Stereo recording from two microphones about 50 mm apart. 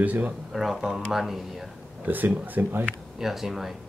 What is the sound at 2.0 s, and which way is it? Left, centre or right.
Speech, right.